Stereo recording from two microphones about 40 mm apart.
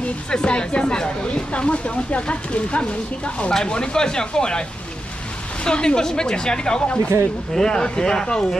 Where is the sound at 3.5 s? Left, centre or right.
Centre.